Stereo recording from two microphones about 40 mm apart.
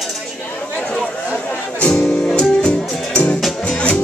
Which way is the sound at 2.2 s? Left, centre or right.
Left.